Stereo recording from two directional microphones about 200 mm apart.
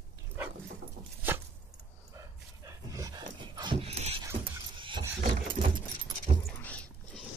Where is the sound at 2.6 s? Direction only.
15° right (ahead or behind).